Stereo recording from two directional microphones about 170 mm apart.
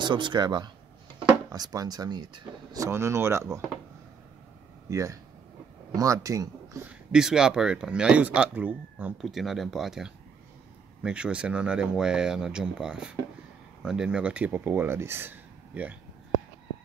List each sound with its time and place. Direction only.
0.0 s speech: 25° right (ahead or behind)
4.8 s speech: 20° right (ahead or behind)
7.1 s speech: 5° right (ahead or behind)